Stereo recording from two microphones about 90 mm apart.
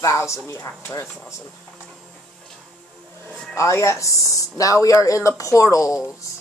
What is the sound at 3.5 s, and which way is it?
Speech, 35° left (ahead or behind).